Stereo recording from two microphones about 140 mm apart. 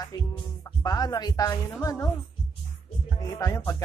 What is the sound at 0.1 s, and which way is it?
Music, 30° left (ahead or behind).